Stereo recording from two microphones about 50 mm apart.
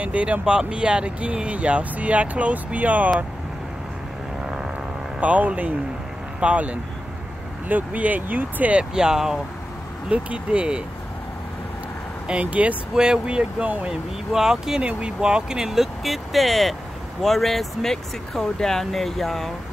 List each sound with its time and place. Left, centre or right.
0.0 s speech: right
5.2 s speech: right
8.7 s speech: centre
10.0 s speech: right
12.3 s speech: right
12.9 s speech: centre
14.3 s speech: centre
14.8 s speech: right; by 19.5 s centre